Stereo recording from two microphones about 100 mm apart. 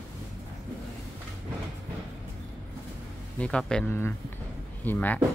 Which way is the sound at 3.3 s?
10° left (ahead or behind).